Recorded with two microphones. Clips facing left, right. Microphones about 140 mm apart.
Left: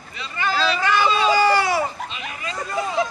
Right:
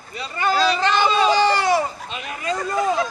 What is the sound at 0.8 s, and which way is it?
Speech, 25° right (ahead or behind).